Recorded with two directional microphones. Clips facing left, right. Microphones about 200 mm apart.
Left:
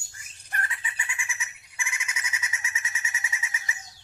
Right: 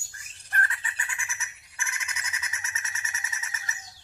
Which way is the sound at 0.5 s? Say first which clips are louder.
Right 2 dB; 15° left (ahead or behind).